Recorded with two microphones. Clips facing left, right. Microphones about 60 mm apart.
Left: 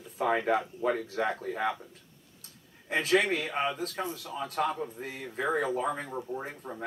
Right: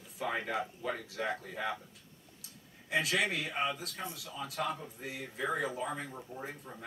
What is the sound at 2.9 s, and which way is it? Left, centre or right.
A man's voice, left.